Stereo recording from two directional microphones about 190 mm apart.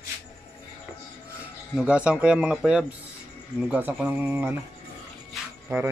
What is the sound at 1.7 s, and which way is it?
A man's voice, 5° right (ahead or behind).